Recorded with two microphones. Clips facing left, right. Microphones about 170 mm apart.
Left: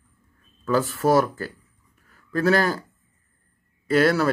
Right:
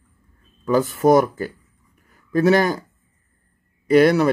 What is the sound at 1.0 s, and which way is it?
A man's voice, 20° right (ahead or behind).